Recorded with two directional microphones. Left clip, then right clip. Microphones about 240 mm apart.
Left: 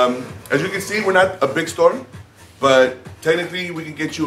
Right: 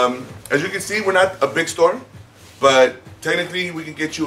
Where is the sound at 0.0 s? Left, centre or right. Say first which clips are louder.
Left 1 dB; centre.